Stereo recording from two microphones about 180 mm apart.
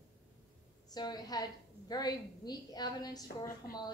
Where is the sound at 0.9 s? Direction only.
20° left (ahead or behind).